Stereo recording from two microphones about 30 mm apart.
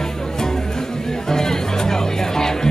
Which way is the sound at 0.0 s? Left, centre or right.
Centre.